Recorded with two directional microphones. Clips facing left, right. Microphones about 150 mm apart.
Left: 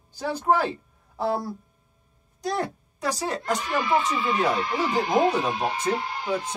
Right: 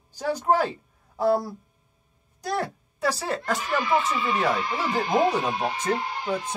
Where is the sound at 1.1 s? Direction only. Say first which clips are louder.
Right 4 dB; 10° right (ahead or behind).